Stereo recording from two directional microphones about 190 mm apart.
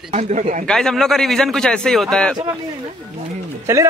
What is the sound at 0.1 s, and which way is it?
Speech, 40° right (ahead or behind).